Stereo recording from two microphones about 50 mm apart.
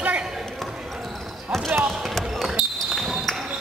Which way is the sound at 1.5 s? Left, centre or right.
Right.